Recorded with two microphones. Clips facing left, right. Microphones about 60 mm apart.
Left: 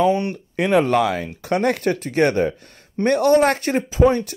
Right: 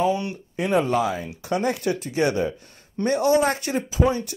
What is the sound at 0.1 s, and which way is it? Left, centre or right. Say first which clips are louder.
Speech: left 5 dB; left.